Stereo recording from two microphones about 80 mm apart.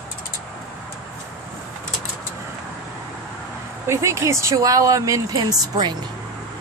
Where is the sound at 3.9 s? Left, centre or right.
Right.